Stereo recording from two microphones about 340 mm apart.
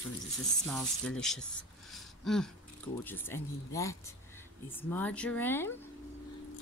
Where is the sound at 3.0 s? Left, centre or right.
Centre.